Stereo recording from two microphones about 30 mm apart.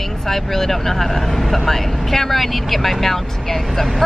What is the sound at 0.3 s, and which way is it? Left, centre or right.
Speech, centre.